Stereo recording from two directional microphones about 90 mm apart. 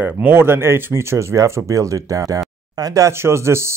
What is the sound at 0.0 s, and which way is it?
Speech, 20° right (ahead or behind).